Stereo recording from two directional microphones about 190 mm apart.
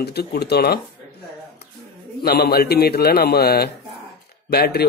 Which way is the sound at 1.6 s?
55° left (ahead or behind).